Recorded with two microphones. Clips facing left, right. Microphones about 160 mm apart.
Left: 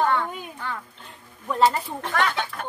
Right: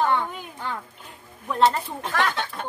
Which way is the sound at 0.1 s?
20° right (ahead or behind).